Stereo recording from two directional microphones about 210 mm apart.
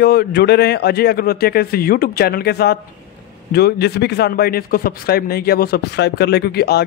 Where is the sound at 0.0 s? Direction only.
50° left (ahead or behind).